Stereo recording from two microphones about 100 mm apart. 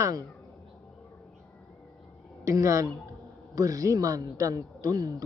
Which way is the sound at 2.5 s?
30° right (ahead or behind).